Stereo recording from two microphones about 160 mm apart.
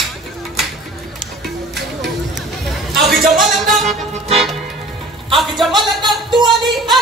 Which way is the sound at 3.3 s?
Centre (ahead or behind).